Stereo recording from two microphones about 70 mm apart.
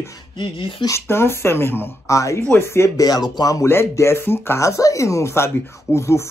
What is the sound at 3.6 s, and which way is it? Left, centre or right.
Speech, left.